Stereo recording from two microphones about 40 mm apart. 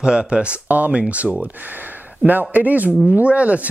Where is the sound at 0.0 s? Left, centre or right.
Right.